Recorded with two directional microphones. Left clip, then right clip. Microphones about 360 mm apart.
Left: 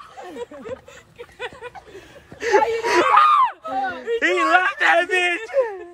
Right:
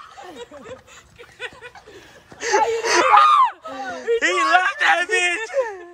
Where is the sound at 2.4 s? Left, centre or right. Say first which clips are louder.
Left 1 dB; centre.